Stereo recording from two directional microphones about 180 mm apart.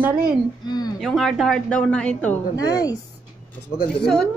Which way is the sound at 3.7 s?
5° left (ahead or behind).